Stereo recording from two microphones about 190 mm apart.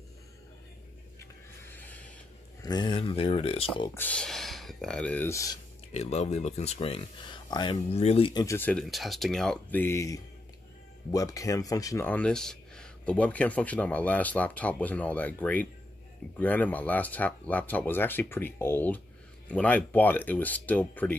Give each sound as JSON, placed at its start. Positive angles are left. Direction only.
{"t": 1.2, "sound": "a sound", "side_deg": 10}
{"t": 2.6, "sound": "speech", "side_deg": 25}
{"t": 3.9, "sound": "speech", "side_deg": 10}
{"t": 5.9, "sound": "speech", "side_deg": 35}